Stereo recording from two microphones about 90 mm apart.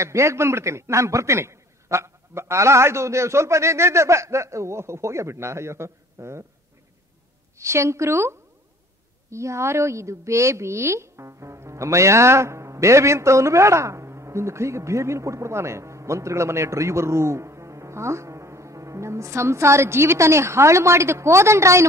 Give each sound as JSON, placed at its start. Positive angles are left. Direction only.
{"t": 0.0, "sound": "a woman's voice", "side_deg": -35}
{"t": 7.5, "sound": "a woman's voice", "side_deg": -30}